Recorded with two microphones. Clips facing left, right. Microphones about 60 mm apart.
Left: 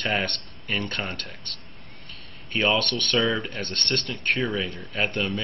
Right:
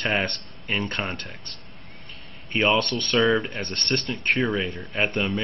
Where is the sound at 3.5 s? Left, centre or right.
Centre.